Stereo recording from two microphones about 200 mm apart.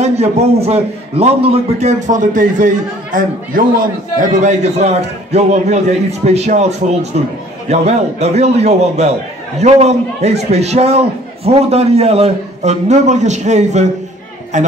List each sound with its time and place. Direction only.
0.0 s a man's voice: 30° right (ahead or behind)